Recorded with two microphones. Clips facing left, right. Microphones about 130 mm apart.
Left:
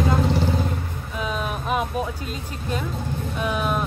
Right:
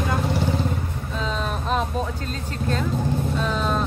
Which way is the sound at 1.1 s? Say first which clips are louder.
Even; 10° left (ahead or behind).